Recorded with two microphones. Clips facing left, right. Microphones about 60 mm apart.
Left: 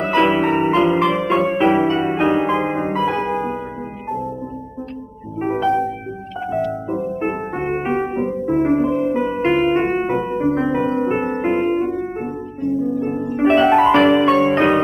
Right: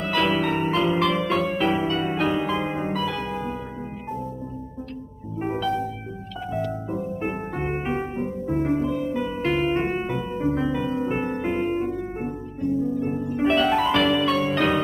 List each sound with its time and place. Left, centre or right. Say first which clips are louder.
0.0 s music: left 7 dB; left
5.4 s music: left 7 dB; left
12.9 s harp: left 5 dB; left